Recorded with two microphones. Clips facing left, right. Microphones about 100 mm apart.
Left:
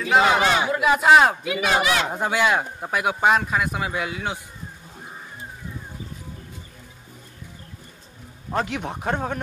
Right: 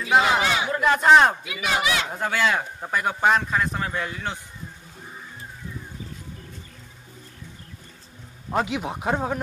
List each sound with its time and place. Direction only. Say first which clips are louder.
0.4 s a sound: left 3 dB; 45° left (ahead or behind)
0.7 s speech: right 1 dB; 10° left (ahead or behind)
1.4 s a man's voice: left 4 dB; 40° left (ahead or behind)
2.0 s speech: left 2 dB; 15° left (ahead or behind)
8.5 s a man's voice: right 1 dB; 5° right (ahead or behind)